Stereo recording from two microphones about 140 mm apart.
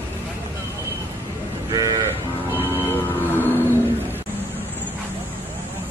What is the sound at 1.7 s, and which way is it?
Sheep, 25° right (ahead or behind).